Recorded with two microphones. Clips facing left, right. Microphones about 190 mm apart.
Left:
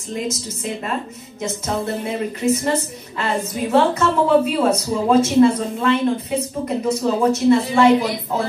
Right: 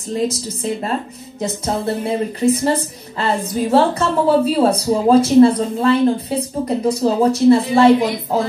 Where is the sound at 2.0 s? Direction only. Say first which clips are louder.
Right 4 dB; 35° right (ahead or behind).